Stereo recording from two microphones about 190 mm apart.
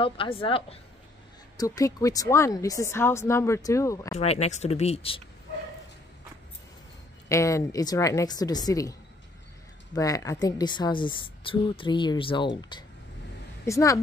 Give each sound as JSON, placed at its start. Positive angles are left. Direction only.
{"t": 0.0, "sound": "a woman's voice", "side_deg": 30}
{"t": 1.6, "sound": "a woman's voice", "side_deg": 20}
{"t": 4.2, "sound": "speech", "side_deg": 35}
{"t": 7.2, "sound": "a woman's voice", "side_deg": 15}
{"t": 9.9, "sound": "a woman's voice", "side_deg": 20}